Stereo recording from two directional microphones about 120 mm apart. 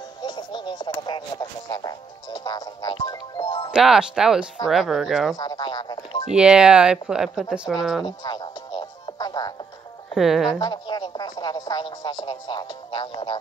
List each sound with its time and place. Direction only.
0.2 s music: 40° left (ahead or behind)
3.7 s speech: 5° right (ahead or behind)
5.4 s music: 35° left (ahead or behind)
6.2 s speech: 5° right (ahead or behind)
8.0 s music: 35° left (ahead or behind)
10.1 s speech: centre (ahead or behind)
10.6 s speech: 35° left (ahead or behind)